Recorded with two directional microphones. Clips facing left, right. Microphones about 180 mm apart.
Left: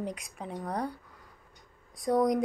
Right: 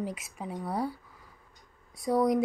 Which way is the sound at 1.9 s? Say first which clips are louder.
Even; centre (ahead or behind).